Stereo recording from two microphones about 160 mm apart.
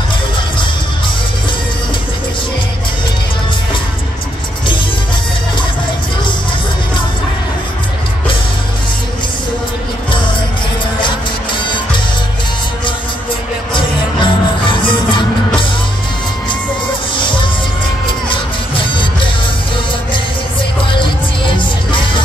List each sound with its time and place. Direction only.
11.0 s music: 30° left (ahead or behind)
13.7 s music: 30° left (ahead or behind)
17.1 s music: 30° left (ahead or behind)
20.9 s music: 30° left (ahead or behind)